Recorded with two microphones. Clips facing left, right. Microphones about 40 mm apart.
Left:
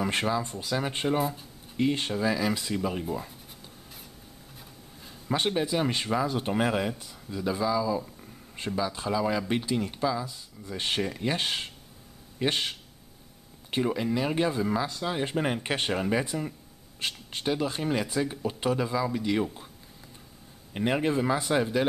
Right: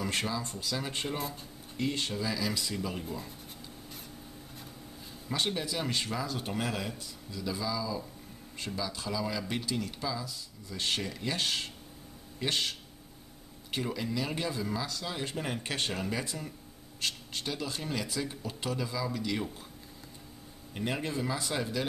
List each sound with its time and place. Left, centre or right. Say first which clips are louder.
0.0 s speech: left 6 dB; left
1.0 s speech: left 9 dB; centre
1.8 s speech: left 6 dB; left
3.0 s speech: left 6 dB; centre
5.3 s speech: left 6 dB; left
20.7 s speech: left 8 dB; left